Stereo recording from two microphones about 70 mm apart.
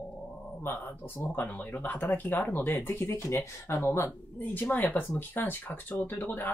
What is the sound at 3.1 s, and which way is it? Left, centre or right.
Speech, left.